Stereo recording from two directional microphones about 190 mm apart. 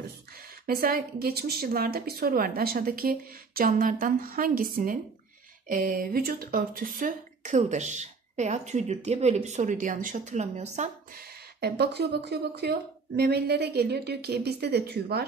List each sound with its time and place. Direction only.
0.3 s speech: 50° right (ahead or behind)